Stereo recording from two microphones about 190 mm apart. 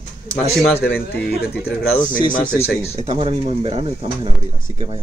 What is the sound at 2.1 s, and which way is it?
Speech, 45° left (ahead or behind).